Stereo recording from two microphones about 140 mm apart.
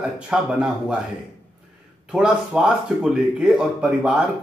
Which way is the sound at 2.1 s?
5° right (ahead or behind).